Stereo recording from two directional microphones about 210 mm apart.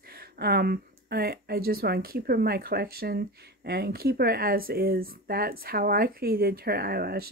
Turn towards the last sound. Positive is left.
turn(degrees=-45)  # may be behind; listen again after turning